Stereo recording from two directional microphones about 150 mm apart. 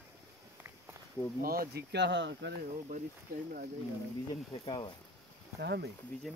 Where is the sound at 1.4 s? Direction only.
75° right (ahead or behind).